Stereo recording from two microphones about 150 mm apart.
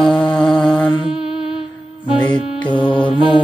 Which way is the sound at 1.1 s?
40° right (ahead or behind).